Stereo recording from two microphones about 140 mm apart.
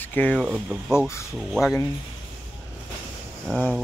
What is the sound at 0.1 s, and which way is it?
Speech, 10° left (ahead or behind).